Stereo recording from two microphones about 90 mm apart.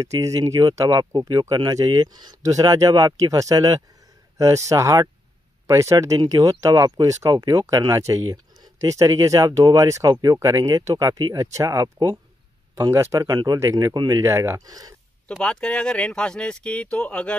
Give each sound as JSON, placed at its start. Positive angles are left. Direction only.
{"t": 0.0, "sound": "speech", "side_deg": -35}
{"t": 14.6, "sound": "speech", "side_deg": -45}
{"t": 15.2, "sound": "speech", "side_deg": 10}